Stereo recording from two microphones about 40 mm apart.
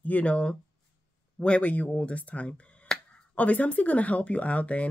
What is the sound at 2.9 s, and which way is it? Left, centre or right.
Finger snapping, centre.